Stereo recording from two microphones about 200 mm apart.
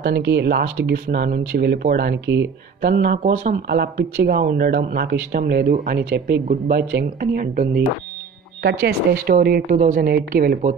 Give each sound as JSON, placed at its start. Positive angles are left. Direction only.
{"t": 0.0, "sound": "speech", "side_deg": -55}